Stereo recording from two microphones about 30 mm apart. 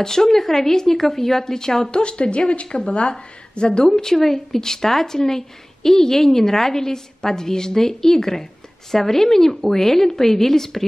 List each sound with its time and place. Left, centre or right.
0.0 s speech: centre
1.9 s a woman's voice: left
3.8 s speech: centre